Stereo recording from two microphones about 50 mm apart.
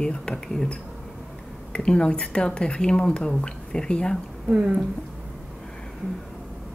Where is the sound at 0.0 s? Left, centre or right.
Centre.